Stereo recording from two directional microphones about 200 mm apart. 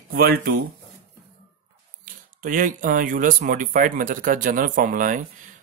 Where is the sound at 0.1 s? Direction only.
50° right (ahead or behind).